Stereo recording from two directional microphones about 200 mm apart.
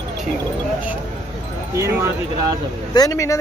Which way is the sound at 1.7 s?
15° right (ahead or behind).